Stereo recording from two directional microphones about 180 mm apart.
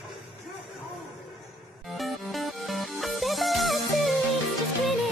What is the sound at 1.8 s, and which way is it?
Music, centre (ahead or behind).